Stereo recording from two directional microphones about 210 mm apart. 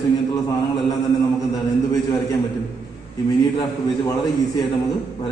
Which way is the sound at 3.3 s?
15° left (ahead or behind).